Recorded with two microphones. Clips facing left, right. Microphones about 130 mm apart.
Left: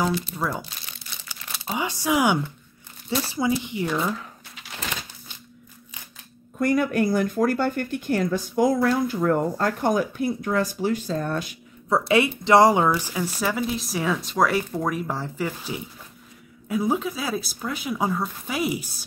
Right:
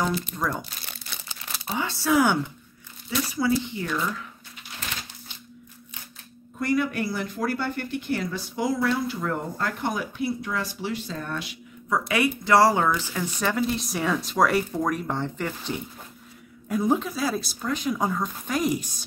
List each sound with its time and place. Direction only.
0.3 s speech: 10° left (ahead or behind)
1.7 s speech: 15° left (ahead or behind)
3.1 s speech: 30° left (ahead or behind)
3.4 s speech: 15° left (ahead or behind)
4.6 s a sound: 90° left
6.6 s speech: 50° left (ahead or behind)
12.0 s speech: 25° left (ahead or behind); by 19.0 s 5° left (ahead or behind)